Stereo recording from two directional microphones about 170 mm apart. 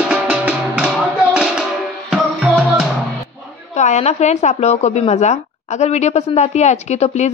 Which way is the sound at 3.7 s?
45° left (ahead or behind).